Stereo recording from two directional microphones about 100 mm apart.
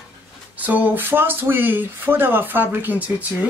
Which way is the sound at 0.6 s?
15° right (ahead or behind).